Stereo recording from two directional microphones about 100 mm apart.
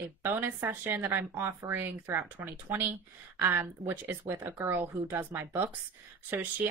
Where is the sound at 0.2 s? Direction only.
20° right (ahead or behind).